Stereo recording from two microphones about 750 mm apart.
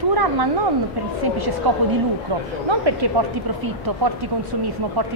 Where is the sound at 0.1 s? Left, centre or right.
Right.